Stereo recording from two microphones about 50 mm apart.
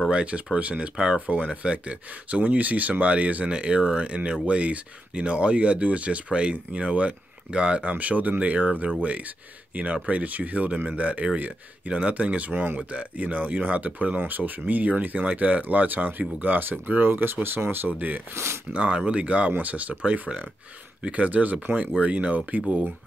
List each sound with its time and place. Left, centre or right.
0.1 s speech: right
0.9 s speech: centre
10.0 s speech: right
18.3 s speech: right
18.7 s speech: right